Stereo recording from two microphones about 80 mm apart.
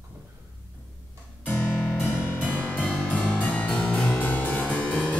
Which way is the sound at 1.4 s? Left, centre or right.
Left.